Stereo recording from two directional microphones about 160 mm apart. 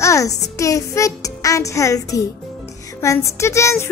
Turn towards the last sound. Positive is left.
turn(degrees=15)  # may be behind; listen again after turning